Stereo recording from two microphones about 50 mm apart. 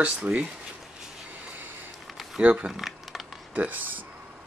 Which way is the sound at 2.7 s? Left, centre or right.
Centre.